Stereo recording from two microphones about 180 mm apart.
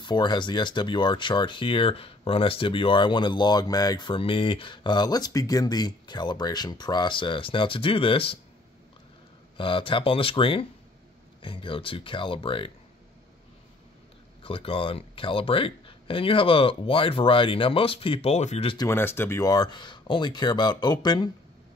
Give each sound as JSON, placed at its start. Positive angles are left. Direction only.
{"t": 0.0, "sound": "speech", "side_deg": 25}
{"t": 9.6, "sound": "speech", "side_deg": 30}
{"t": 14.4, "sound": "speech", "side_deg": 30}
{"t": 18.9, "sound": "speech", "side_deg": 10}